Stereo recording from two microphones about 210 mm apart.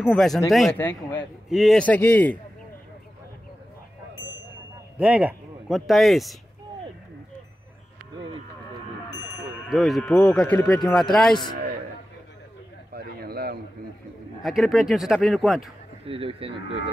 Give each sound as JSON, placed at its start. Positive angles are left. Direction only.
{"t": 0.0, "sound": "a man's voice", "side_deg": 0}
{"t": 4.9, "sound": "speech", "side_deg": -5}
{"t": 9.7, "sound": "speech", "side_deg": 0}
{"t": 12.9, "sound": "a sound", "side_deg": -45}
{"t": 14.4, "sound": "speech", "side_deg": 0}
{"t": 16.1, "sound": "speech", "side_deg": -25}